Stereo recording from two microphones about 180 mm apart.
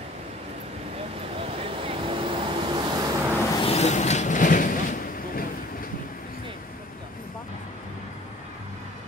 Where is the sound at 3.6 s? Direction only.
35° left (ahead or behind).